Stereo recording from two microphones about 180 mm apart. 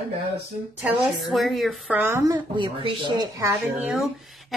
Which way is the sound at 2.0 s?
15° right (ahead or behind).